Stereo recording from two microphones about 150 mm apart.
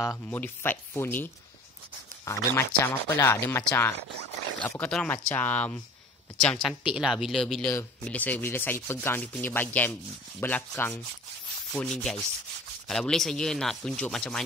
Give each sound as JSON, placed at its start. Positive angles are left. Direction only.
{"t": 0.3, "sound": "sanding", "side_deg": 15}
{"t": 6.4, "sound": "speech", "side_deg": 5}
{"t": 7.7, "sound": "sanding", "side_deg": 10}
{"t": 11.7, "sound": "speech", "side_deg": 5}